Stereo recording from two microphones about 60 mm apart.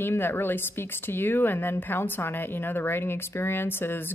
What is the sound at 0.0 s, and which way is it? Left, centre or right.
A woman's voice, left.